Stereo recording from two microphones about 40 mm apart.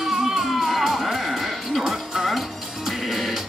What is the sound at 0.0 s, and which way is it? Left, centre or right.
Music, centre.